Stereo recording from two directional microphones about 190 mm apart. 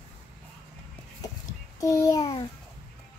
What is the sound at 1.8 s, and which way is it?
Speech, 15° left (ahead or behind).